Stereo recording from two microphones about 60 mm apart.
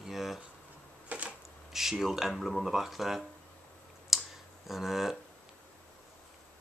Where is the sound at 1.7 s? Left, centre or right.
Centre.